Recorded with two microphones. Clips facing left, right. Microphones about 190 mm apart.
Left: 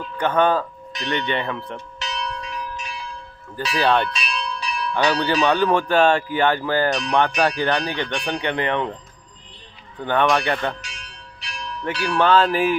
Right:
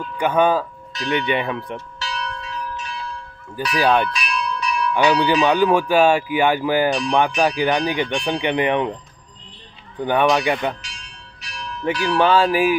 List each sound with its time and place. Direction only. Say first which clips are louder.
0.2 s speech: right 1 dB; 10° right (ahead or behind)
2.0 s church bell: even; 20° left (ahead or behind)
3.7 s speech: right 2 dB; 10° right (ahead or behind)
4.1 s church bell: right 3 dB; 30° left (ahead or behind)
4.9 s speech: right 3 dB; 10° right (ahead or behind)
10.0 s speech: right 2 dB; 10° right (ahead or behind)
11.8 s speech: right 3 dB; 20° right (ahead or behind)